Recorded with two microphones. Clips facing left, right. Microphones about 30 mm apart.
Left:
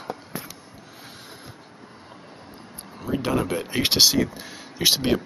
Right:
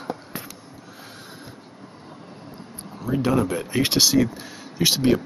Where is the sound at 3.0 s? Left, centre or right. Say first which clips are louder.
Right 3 dB; centre.